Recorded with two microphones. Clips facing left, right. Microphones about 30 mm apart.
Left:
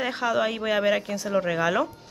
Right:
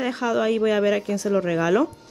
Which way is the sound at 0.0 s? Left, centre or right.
Centre.